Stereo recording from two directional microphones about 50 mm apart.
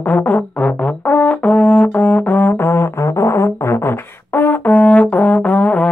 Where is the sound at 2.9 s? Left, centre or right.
Left.